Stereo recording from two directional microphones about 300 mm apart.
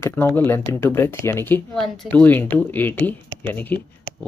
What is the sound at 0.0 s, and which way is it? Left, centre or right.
Speech, centre.